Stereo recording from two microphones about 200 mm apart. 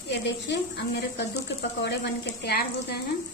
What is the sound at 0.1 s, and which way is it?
Speech, 60° left (ahead or behind).